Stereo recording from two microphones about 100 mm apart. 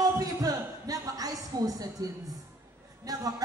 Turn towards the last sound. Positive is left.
turn(degrees=-35)  # may be behind; listen again after turning